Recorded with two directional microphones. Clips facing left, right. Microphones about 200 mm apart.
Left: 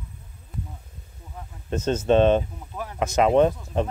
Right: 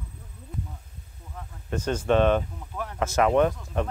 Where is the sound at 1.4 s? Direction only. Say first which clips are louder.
Left 3 dB; 25° left (ahead or behind).